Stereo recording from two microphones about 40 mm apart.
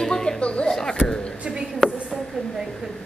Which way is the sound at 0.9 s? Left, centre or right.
Centre.